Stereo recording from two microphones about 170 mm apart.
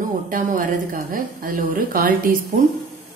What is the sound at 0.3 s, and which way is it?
A woman's voice, 50° right (ahead or behind).